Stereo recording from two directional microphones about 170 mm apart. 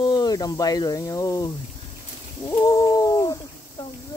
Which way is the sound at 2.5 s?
20° left (ahead or behind).